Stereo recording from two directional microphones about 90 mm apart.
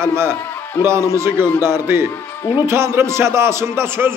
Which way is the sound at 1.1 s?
30° right (ahead or behind).